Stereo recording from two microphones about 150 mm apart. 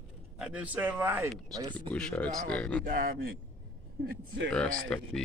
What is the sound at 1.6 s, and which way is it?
Speech, 30° right (ahead or behind).